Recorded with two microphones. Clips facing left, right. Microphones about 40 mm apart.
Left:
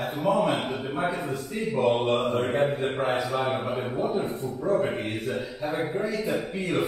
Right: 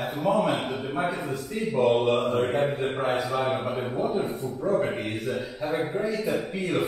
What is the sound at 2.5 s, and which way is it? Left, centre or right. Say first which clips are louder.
Mantra: left 1 dB; left.